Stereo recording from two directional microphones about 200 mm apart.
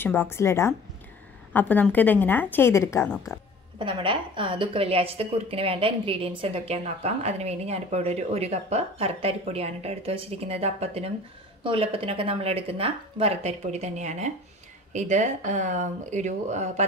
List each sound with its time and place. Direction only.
0.0 s a woman's voice: 10° left (ahead or behind)
3.8 s a woman's voice: 25° right (ahead or behind)